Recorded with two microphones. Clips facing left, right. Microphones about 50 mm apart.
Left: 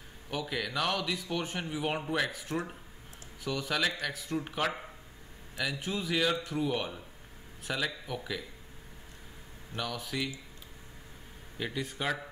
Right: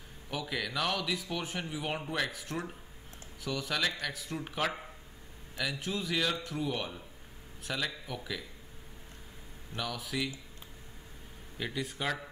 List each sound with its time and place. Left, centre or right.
0.3 s a man's voice: centre
9.8 s a man's voice: centre
11.5 s a man's voice: centre